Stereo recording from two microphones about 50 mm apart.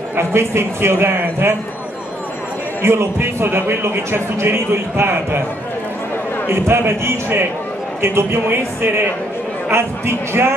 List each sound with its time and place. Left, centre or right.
0.1 s a man's voice: right
2.8 s a man's voice: right
6.8 s a man's voice: right
8.0 s a man's voice: right